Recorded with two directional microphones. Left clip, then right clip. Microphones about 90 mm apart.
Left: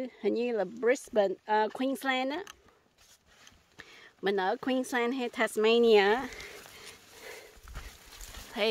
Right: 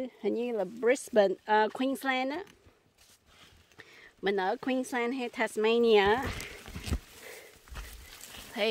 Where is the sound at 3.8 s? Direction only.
10° left (ahead or behind).